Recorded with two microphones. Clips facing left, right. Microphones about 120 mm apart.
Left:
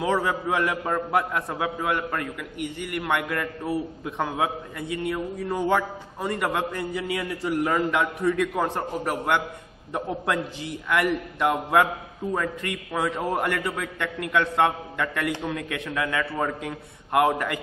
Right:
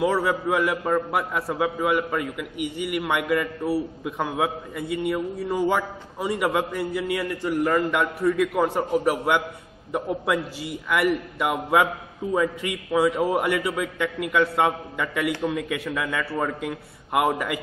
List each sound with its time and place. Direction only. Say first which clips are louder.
0.0 s a man's voice: right 2 dB; centre (ahead or behind)